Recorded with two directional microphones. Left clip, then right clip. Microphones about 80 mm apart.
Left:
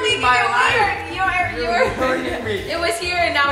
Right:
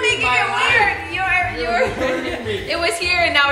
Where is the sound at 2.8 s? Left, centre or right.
Right.